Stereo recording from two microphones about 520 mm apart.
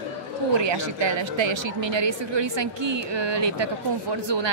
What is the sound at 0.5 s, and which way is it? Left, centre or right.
Speech, right.